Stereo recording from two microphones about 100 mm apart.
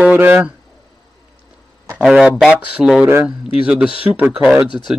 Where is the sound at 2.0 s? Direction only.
5° right (ahead or behind).